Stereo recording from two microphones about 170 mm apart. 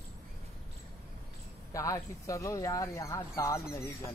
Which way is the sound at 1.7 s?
20° left (ahead or behind).